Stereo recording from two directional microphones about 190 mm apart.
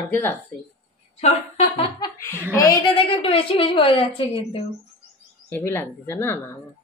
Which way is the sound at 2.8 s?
30° left (ahead or behind).